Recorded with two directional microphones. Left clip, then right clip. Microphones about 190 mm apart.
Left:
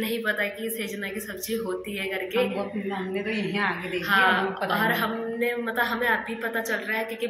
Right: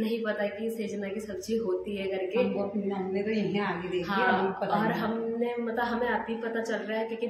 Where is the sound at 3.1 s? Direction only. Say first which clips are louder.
Left 1 dB; centre (ahead or behind).